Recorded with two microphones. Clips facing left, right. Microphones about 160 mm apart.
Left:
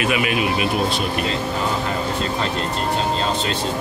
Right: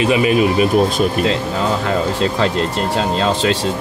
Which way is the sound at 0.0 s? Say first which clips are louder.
Right 7 dB; 30° right (ahead or behind).